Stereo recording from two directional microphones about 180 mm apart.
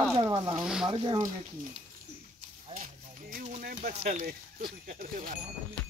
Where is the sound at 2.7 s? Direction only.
50° right (ahead or behind).